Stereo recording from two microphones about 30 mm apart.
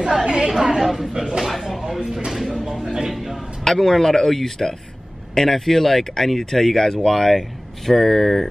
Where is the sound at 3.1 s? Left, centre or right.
Centre.